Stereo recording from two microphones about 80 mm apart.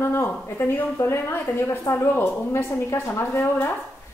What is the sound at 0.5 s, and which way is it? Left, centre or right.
A woman's voice, left.